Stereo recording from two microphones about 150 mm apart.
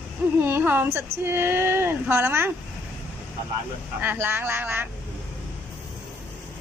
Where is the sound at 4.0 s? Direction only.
15° right (ahead or behind).